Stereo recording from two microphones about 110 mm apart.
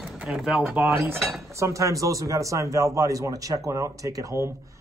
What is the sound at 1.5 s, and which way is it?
A man's voice, 30° right (ahead or behind).